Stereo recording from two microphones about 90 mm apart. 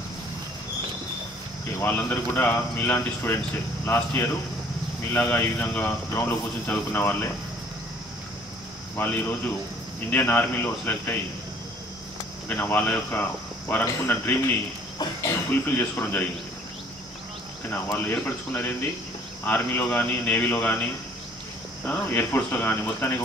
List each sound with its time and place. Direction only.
1.8 s speech: 20° left (ahead or behind)
8.9 s speech: 25° left (ahead or behind)
12.4 s speech: 20° left (ahead or behind)
15.5 s speech: 20° left (ahead or behind)
17.6 s speech: 20° left (ahead or behind)
21.8 s speech: 25° left (ahead or behind)